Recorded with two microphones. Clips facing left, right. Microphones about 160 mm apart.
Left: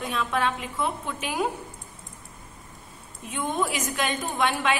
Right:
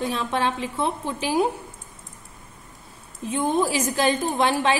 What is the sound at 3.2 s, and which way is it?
A woman's voice, 35° right (ahead or behind).